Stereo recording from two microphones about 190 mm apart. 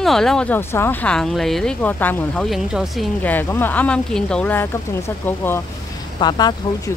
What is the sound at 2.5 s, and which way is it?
Speech, centre (ahead or behind).